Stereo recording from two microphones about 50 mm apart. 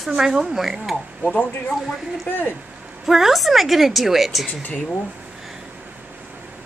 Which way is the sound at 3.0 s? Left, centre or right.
Centre.